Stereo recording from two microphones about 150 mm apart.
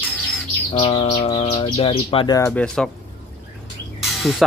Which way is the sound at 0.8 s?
45° left (ahead or behind).